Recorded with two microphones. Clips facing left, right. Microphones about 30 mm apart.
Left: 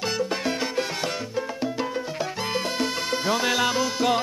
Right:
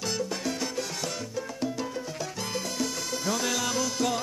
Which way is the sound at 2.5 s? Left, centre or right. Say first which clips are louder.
Left 5 dB; left.